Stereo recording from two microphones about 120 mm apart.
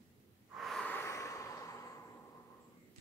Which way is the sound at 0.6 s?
Centre (ahead or behind).